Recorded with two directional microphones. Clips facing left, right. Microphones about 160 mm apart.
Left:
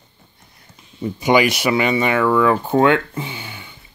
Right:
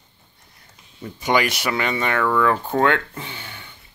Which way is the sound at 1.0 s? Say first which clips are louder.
Left 5 dB; 10° left (ahead or behind).